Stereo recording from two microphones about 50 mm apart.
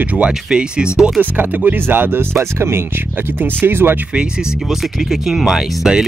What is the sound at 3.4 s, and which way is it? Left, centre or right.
Speech, right.